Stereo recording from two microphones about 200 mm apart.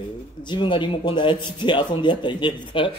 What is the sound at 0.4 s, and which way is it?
Speech, 25° left (ahead or behind).